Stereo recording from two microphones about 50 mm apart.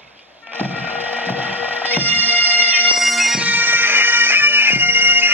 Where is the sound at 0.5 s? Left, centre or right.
Right.